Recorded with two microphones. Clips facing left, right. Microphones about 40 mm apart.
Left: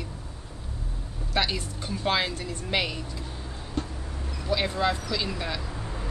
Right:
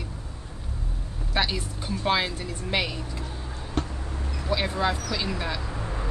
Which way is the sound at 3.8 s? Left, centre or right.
Right.